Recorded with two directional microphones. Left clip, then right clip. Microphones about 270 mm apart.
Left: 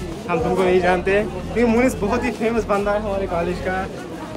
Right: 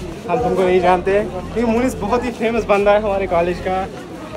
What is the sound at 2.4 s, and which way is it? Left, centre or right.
Speech, right.